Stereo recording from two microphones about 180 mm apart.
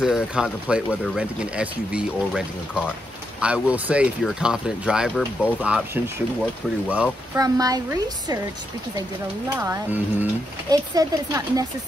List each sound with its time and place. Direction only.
0.0 s speech: 5° right (ahead or behind)
7.3 s speech: 20° right (ahead or behind)
9.5 s speech: 15° right (ahead or behind)